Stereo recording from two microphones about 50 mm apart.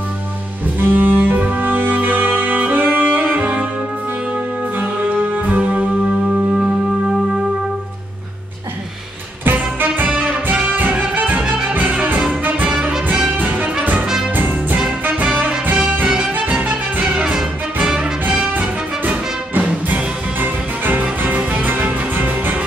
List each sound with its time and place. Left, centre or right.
0.7 s music: right
4.7 s music: right
9.4 s music: right
10.1 s music: right
10.7 s music: right
13.3 s music: right
17.0 s music: centre
18.6 s music: right